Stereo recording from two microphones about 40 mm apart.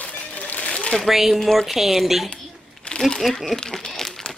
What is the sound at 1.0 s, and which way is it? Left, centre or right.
Speech, centre.